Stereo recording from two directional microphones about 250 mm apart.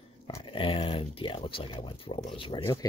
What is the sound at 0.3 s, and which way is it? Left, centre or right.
Speech, centre.